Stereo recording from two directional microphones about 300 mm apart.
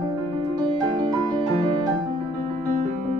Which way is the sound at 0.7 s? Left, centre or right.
Centre.